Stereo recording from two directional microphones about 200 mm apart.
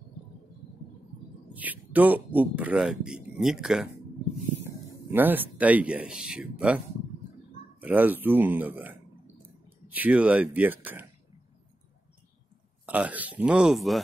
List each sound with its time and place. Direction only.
1.5 s speech: 10° right (ahead or behind)
5.1 s speech: 10° right (ahead or behind)
7.8 s speech: 10° right (ahead or behind)
12.8 s speech: 5° right (ahead or behind)